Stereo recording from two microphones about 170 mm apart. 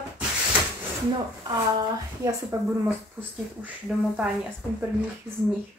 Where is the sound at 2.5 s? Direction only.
20° right (ahead or behind).